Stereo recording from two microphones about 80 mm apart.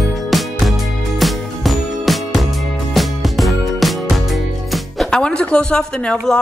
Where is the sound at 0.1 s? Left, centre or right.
Centre.